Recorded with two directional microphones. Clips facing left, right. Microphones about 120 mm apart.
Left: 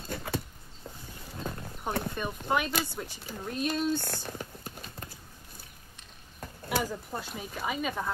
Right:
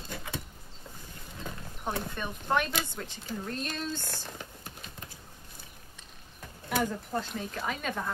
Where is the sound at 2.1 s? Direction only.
10° left (ahead or behind).